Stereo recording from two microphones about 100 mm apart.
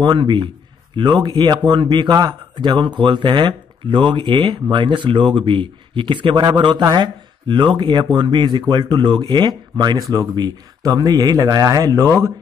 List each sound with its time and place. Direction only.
0.0 s speech: 50° right (ahead or behind); by 12.3 s 30° right (ahead or behind)